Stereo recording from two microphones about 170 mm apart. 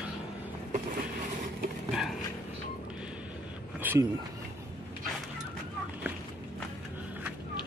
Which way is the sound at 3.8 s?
10° right (ahead or behind).